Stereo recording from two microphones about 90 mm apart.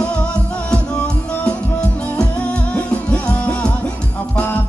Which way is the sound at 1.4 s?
10° left (ahead or behind).